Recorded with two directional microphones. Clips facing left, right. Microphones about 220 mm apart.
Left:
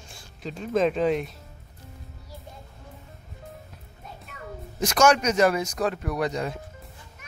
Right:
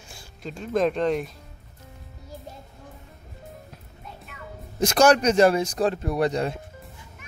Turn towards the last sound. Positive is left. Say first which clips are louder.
# right 4 dB
turn(degrees=-30)  # may be behind; listen again after turning